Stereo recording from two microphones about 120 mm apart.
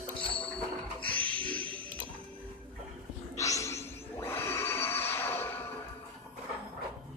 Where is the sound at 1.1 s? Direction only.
15° left (ahead or behind).